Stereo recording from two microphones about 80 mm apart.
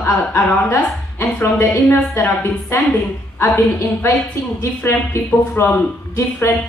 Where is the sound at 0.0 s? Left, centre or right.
Left.